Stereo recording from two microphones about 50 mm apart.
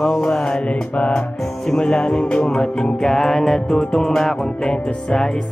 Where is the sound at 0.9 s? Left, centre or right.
Left.